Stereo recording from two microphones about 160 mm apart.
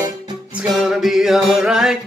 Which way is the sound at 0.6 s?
5° right (ahead or behind).